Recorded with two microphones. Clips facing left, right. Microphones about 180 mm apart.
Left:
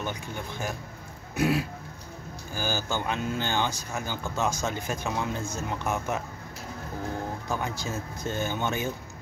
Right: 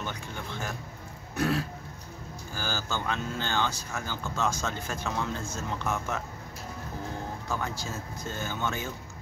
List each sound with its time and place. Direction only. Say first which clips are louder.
0.0 s speech: left 3 dB; 15° left (ahead or behind)
7.4 s speech: even; 15° left (ahead or behind)